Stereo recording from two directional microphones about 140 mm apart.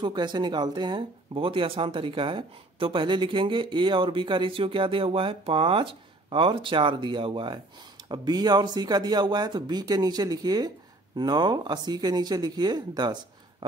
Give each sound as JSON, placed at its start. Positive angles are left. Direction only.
{"t": 0.0, "sound": "speech", "side_deg": -30}